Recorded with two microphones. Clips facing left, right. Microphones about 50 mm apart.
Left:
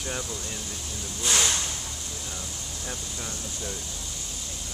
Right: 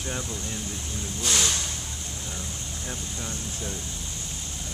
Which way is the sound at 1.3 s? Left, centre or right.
Centre.